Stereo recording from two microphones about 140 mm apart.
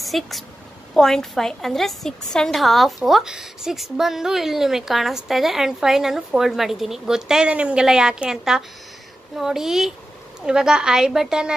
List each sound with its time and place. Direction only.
0.0 s a woman's voice: centre (ahead or behind)